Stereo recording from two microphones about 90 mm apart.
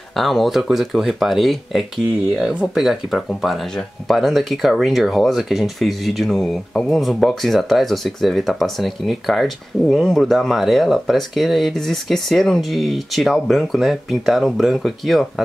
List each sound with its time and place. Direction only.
0.1 s speech: centre (ahead or behind)